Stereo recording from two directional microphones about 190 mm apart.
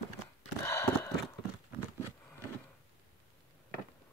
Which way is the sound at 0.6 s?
15° left (ahead or behind).